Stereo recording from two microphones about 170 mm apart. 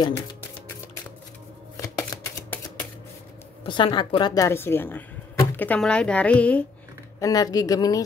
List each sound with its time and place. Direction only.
1.8 s shuffling cards: 20° left (ahead or behind)
3.6 s speech: 30° left (ahead or behind); by 6.6 s 10° left (ahead or behind)
7.2 s speech: 20° left (ahead or behind)